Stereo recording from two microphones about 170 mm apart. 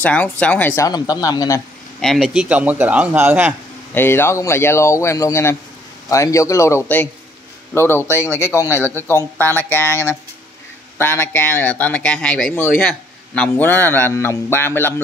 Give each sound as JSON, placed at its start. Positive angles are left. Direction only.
{"t": 0.0, "sound": "speech", "side_deg": 10}
{"t": 2.0, "sound": "a man's voice", "side_deg": 0}
{"t": 3.9, "sound": "speech", "side_deg": 15}
{"t": 8.7, "sound": "a man's voice", "side_deg": -15}
{"t": 9.0, "sound": "speech", "side_deg": 15}